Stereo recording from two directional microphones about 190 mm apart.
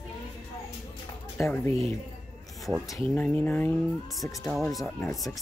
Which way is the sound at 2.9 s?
10° left (ahead or behind).